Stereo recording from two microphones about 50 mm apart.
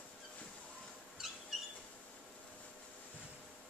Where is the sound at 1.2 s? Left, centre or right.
Centre.